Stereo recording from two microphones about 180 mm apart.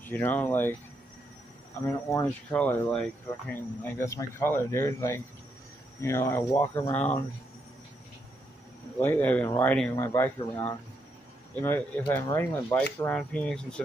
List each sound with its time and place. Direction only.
0.0 s speech: 10° left (ahead or behind)
2.0 s speech: 15° left (ahead or behind)
2.5 s speech: 5° left (ahead or behind)
9.0 s speech: 10° left (ahead or behind)